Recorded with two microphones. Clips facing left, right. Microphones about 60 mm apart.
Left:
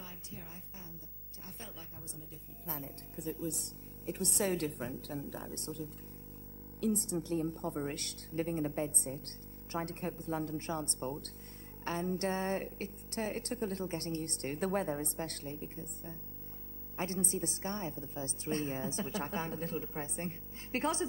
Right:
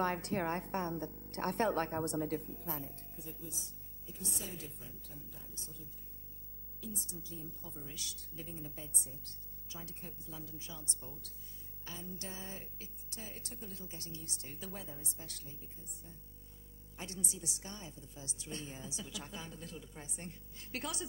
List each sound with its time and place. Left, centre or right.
0.0 s a woman's voice: right
2.8 s a woman's voice: left